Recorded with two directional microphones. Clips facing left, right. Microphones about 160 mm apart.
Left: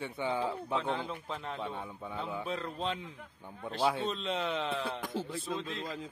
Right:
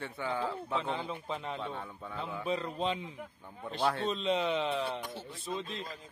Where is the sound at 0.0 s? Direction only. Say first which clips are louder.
Left 2 dB; 15° left (ahead or behind).